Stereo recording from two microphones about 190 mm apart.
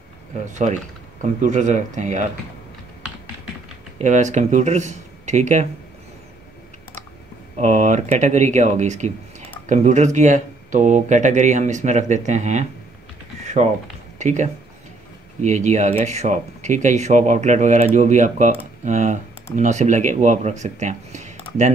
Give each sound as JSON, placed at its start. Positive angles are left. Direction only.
{"t": 0.5, "sound": "speech", "side_deg": -40}
{"t": 4.0, "sound": "speech", "side_deg": -40}
{"t": 7.5, "sound": "speech", "side_deg": -40}
{"t": 14.1, "sound": "speech", "side_deg": -40}